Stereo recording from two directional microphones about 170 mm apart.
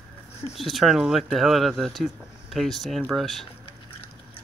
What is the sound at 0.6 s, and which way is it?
Speech, centre (ahead or behind).